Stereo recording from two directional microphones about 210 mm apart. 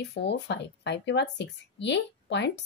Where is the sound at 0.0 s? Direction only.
55° left (ahead or behind).